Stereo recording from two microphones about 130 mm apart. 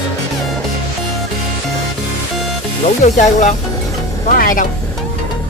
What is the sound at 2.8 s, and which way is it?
Speech, 65° left (ahead or behind).